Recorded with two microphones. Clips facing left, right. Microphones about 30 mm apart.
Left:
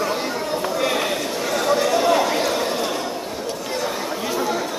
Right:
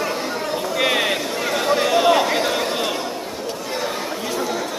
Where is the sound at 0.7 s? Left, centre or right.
Right.